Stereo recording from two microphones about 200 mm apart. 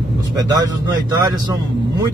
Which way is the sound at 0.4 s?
20° right (ahead or behind).